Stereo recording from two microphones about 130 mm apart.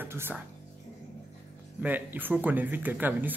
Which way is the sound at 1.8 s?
15° right (ahead or behind).